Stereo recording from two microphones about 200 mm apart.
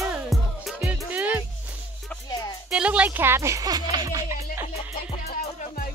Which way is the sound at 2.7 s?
5° right (ahead or behind).